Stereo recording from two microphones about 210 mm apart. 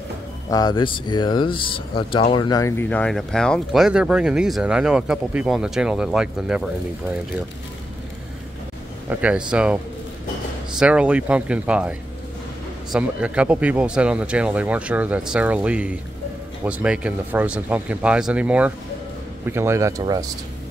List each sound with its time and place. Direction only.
0.5 s speech: 20° left (ahead or behind); by 6.7 s 5° right (ahead or behind)
9.1 s speech: 5° right (ahead or behind)
10.8 s speech: 5° right (ahead or behind)
12.9 s speech: 5° right (ahead or behind)